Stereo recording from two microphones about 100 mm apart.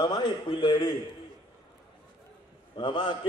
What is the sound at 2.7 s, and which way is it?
Speech, 55° left (ahead or behind).